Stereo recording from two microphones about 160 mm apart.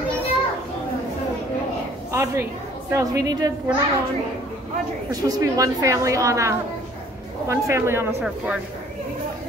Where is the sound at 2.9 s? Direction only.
20° right (ahead or behind).